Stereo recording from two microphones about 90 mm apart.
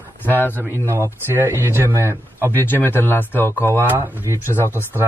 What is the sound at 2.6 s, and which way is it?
Speech, 25° left (ahead or behind).